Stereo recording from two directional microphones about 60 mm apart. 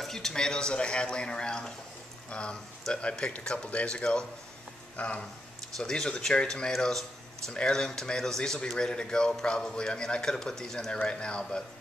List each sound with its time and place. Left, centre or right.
0.0 s speech: centre
2.9 s speech: centre
5.8 s speech: centre